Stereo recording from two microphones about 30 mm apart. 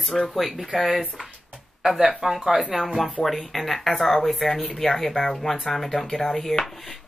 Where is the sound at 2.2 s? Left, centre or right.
Centre.